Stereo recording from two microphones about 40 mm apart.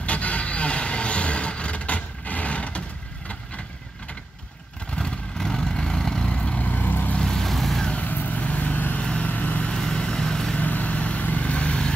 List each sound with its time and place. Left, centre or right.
0.0 s vehicle: left
4.9 s vehicle: centre
6.7 s vehicle: left
7.2 s vehicle: centre
7.4 s vehicle: centre
7.9 s vehicle: left
9.0 s vehicle: left
9.3 s vehicle: left
9.7 s vehicle: centre
10.6 s vehicle: left